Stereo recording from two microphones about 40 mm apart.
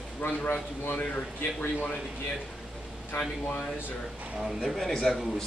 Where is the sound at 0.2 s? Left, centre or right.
Left.